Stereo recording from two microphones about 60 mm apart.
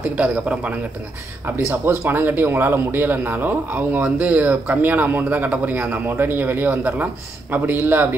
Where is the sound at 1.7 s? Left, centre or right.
Right.